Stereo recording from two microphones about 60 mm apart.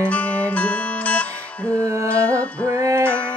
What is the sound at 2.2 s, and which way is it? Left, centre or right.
Music, left.